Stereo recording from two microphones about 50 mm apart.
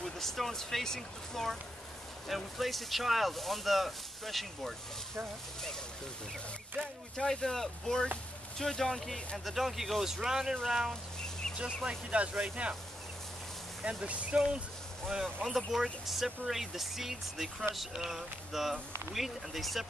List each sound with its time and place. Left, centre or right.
0.0 s speech: centre
7.2 s speech: centre
9.4 s speech: centre
10.9 s a sound: centre
11.5 s speech: centre
13.8 s speech: right
15.4 s speech: centre